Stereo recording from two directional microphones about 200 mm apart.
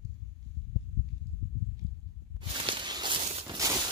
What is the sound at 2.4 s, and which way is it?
Walk, 25° right (ahead or behind).